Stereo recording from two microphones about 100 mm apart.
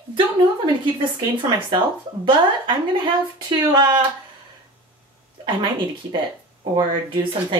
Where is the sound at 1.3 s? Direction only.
50° right (ahead or behind).